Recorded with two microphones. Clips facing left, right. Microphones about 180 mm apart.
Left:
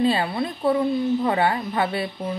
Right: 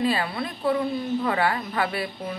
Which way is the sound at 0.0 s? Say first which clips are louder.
Left 4 dB; 25° left (ahead or behind).